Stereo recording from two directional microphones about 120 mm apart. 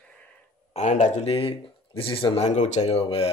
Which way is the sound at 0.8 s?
85° left.